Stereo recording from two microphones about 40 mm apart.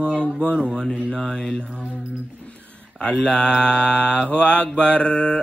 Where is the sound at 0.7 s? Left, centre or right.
Left.